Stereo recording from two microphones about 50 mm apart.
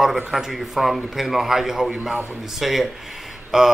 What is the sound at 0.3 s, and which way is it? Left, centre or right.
A man's voice, centre.